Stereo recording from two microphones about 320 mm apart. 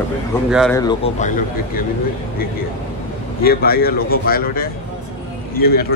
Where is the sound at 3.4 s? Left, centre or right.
Left.